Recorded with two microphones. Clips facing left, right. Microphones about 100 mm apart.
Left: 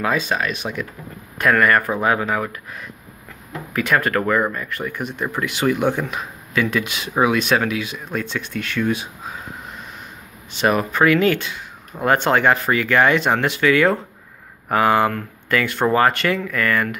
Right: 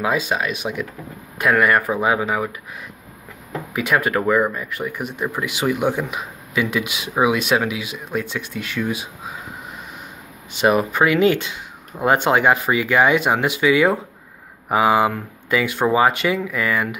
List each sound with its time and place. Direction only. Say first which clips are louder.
0.0 s speech: even; 10° right (ahead or behind)
3.7 s speech: even; 10° right (ahead or behind)
10.5 s speech: right 2 dB; 15° right (ahead or behind)